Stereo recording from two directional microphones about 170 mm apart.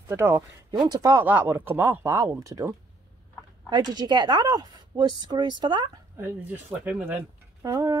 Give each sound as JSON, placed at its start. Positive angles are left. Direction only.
{"t": 0.1, "sound": "speech", "side_deg": -15}
{"t": 3.7, "sound": "speech", "side_deg": -25}
{"t": 6.2, "sound": "speech", "side_deg": -10}